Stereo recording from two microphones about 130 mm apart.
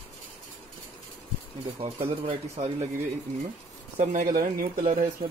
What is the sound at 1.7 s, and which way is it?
Speech, 45° right (ahead or behind).